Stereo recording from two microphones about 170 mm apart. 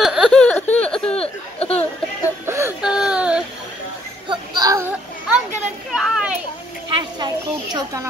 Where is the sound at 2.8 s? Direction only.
5° right (ahead or behind).